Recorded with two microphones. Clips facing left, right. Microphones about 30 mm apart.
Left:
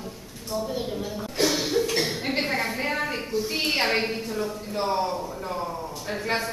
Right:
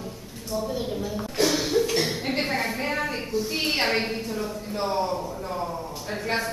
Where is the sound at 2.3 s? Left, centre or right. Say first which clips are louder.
Even; centre.